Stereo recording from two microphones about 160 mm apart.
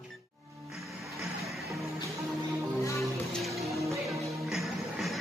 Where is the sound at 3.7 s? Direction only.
20° right (ahead or behind).